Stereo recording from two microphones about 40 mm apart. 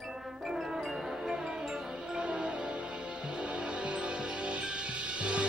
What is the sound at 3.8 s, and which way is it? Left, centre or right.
Music, right.